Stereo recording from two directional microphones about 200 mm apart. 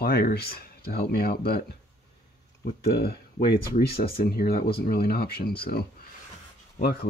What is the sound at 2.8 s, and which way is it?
Speech, 50° left (ahead or behind).